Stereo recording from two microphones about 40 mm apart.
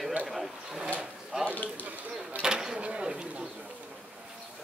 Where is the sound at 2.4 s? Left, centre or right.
Centre.